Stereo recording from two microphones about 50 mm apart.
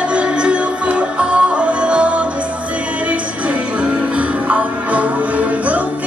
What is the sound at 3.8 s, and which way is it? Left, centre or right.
Music, right.